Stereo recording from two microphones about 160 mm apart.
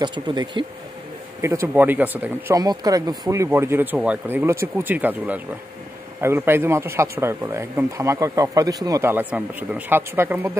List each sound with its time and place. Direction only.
0.0 s speech: 30° right (ahead or behind)
1.4 s speech: 20° right (ahead or behind)